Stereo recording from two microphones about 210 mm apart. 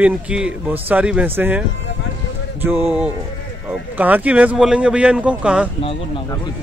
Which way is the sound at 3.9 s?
10° right (ahead or behind).